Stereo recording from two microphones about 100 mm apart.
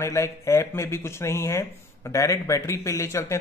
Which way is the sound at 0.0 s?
30° left (ahead or behind).